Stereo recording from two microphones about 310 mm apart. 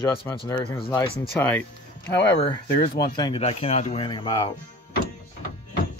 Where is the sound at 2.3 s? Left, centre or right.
Centre.